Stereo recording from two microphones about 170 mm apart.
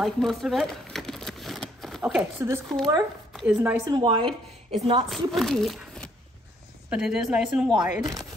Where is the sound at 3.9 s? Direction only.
25° right (ahead or behind).